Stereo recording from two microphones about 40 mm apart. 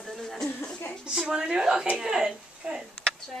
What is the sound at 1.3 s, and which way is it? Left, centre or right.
Speech, right.